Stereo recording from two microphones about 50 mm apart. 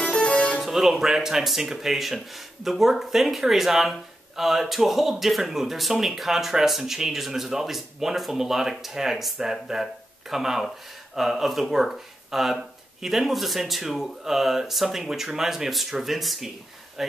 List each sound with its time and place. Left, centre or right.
0.0 s music: left
0.7 s speech: centre